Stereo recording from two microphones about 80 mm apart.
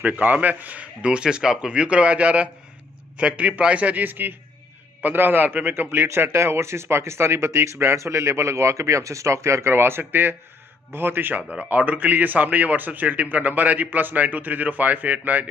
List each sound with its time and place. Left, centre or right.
0.0 s a man's voice: right